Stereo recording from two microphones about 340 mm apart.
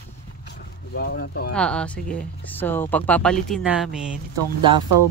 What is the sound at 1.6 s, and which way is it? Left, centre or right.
Speech, centre.